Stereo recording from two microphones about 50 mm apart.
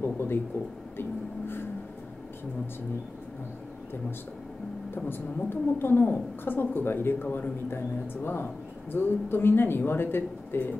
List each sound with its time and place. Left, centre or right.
0.0 s speech: left
4.9 s a woman's voice: left